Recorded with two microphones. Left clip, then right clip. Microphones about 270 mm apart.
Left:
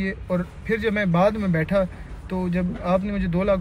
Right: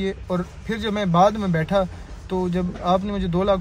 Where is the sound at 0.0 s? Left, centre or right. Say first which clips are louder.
Right 1 dB; centre.